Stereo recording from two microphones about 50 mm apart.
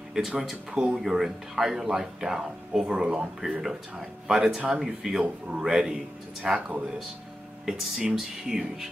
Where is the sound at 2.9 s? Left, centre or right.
Right.